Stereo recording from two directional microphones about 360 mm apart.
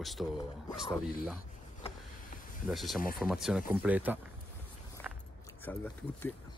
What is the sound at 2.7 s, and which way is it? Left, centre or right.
Speech, centre.